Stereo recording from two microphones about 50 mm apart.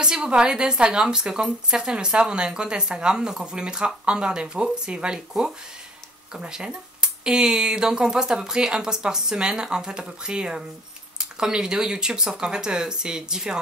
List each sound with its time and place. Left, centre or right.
0.0 s a woman's voice: centre